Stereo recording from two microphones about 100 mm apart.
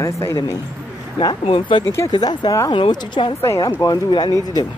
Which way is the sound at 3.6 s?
40° left (ahead or behind).